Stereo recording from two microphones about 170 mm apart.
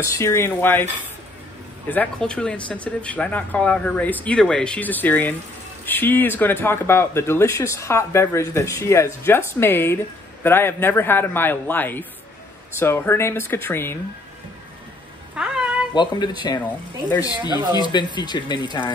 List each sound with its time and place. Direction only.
0.0 s speech: 15° left (ahead or behind)
1.9 s speech: 10° left (ahead or behind)
15.3 s cat: 5° right (ahead or behind)
15.9 s speech: 25° left (ahead or behind)
17.7 s speech: 25° left (ahead or behind)